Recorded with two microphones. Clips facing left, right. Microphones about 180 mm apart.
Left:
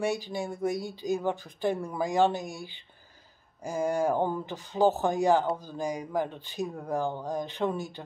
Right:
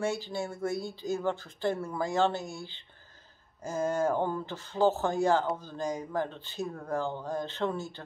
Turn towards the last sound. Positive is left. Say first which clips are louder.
# left 2 dB
turn(degrees=15)  # may be behind; listen again after turning